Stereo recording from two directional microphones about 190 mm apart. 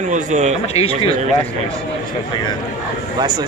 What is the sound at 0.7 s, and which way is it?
Speech, 30° left (ahead or behind).